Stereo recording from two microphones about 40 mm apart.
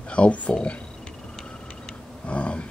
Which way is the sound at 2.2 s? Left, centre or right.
Left.